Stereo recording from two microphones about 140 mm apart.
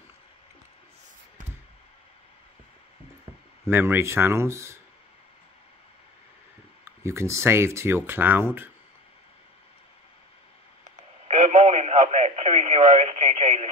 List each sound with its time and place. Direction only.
3.6 s speech: 15° right (ahead or behind)
6.8 s speech: 20° right (ahead or behind)
10.8 s radio: 60° right (ahead or behind)